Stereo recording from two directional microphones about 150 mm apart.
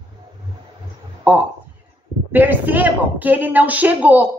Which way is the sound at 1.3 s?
10° right (ahead or behind).